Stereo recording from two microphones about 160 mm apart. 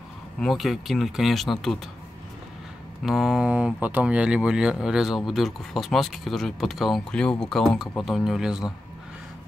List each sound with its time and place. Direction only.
0.4 s speech: centre (ahead or behind)
3.0 s speech: 5° right (ahead or behind)